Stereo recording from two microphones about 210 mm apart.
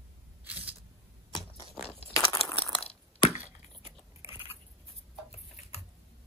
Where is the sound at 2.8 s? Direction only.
25° left (ahead or behind).